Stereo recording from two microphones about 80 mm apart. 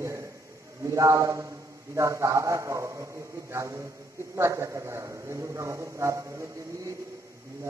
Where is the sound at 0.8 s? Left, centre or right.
Right.